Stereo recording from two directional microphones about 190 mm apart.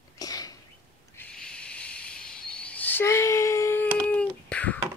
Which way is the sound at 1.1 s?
5° left (ahead or behind).